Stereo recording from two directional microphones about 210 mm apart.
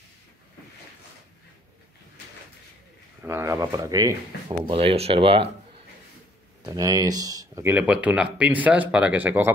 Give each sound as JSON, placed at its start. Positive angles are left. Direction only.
{"t": 3.2, "sound": "speech", "side_deg": -10}
{"t": 6.6, "sound": "speech", "side_deg": -15}